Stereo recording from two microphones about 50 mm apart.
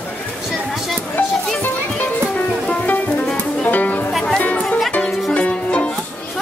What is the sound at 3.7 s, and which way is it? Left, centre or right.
Music, left.